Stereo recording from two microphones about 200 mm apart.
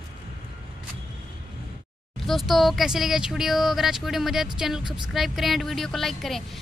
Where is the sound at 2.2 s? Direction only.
Centre (ahead or behind).